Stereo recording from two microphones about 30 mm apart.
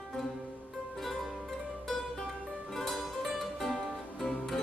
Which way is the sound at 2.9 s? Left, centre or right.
Centre.